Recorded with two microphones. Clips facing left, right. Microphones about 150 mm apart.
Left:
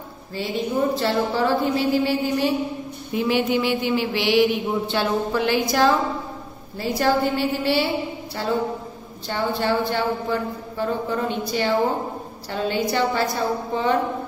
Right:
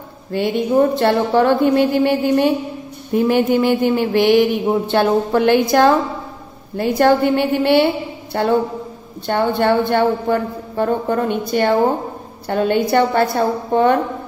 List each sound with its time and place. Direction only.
0.3 s speech: 60° right (ahead or behind)